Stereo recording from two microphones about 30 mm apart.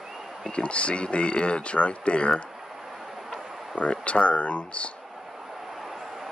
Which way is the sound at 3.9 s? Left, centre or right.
Left.